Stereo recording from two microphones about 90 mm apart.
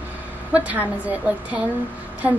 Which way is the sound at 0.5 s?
15° right (ahead or behind).